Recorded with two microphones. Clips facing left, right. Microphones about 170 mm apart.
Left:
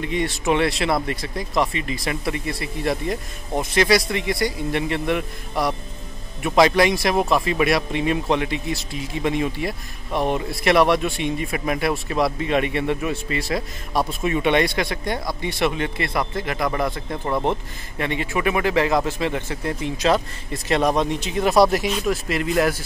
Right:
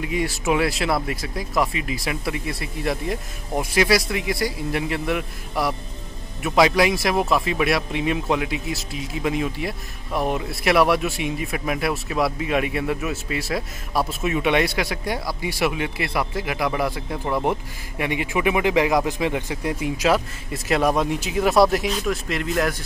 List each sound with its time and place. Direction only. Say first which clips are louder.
0.0 s speech: left 1 dB; 5° right (ahead or behind)